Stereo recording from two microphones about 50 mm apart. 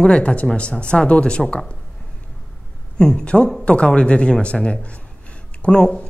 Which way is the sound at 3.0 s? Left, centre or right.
Centre.